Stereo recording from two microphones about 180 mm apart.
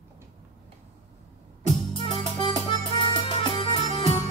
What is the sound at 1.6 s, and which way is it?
Music, 30° left (ahead or behind).